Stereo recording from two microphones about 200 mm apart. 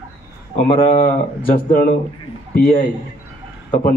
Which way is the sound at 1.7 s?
45° left (ahead or behind).